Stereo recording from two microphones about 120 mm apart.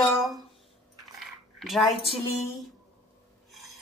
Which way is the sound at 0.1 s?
Centre (ahead or behind).